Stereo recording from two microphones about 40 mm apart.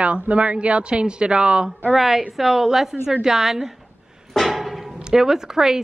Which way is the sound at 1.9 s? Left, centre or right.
Centre.